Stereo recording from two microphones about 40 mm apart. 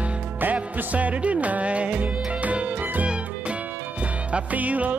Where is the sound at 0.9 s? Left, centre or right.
Right.